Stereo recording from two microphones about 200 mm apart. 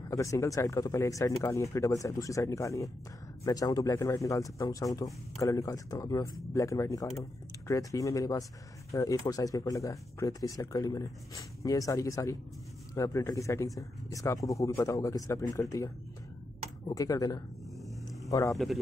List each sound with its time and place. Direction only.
0.1 s speech: 15° left (ahead or behind)
18.5 s a man's voice: centre (ahead or behind)